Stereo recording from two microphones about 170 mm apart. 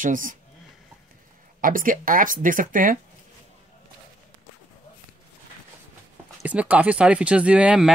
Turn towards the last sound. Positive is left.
turn(degrees=-5)  # may be behind; listen again after turning